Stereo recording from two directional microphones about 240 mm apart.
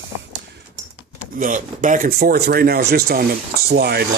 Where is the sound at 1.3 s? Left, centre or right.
Right.